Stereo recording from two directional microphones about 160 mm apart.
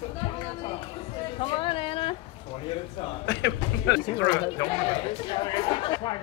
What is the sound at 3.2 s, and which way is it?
Speech, 90° left.